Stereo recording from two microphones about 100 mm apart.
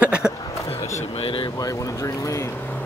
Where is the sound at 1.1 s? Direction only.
65° left (ahead or behind).